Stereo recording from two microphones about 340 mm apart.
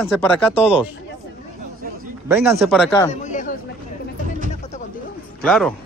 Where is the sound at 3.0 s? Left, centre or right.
Left.